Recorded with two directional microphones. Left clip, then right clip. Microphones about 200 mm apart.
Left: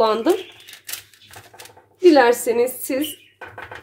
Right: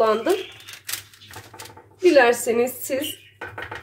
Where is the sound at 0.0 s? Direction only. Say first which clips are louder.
Left 1 dB; 45° left (ahead or behind).